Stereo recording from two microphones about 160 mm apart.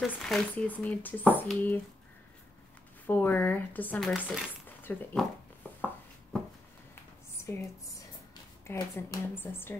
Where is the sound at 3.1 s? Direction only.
10° left (ahead or behind).